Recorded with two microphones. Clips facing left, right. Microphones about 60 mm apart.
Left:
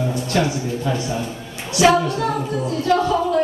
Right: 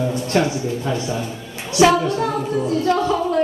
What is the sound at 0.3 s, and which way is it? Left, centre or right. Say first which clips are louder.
A man's voice: right 2 dB; right.